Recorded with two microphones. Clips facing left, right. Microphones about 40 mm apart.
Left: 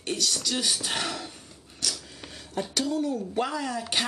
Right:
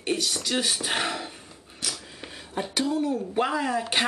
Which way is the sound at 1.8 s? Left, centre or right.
Centre.